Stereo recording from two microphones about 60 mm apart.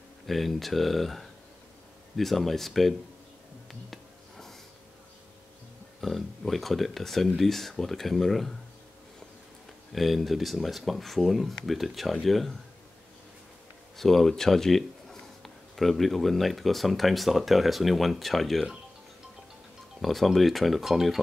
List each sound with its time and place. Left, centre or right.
0.3 s speech: centre
3.9 s a sound: centre
5.9 s speech: centre
9.9 s speech: centre
13.9 s speech: centre
20.0 s speech: centre